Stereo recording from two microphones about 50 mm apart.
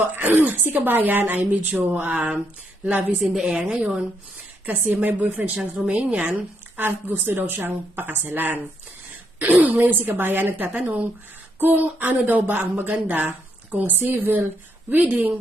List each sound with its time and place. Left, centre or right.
0.0 s a woman's voice: right
3.4 s a woman's voice: centre
4.6 s a woman's voice: right
6.8 s speech: right
9.4 s a woman's voice: right